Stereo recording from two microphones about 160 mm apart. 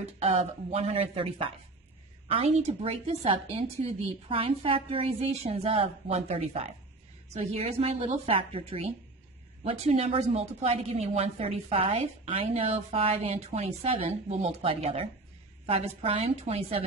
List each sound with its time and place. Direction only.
0.0 s a woman's voice: 40° right (ahead or behind)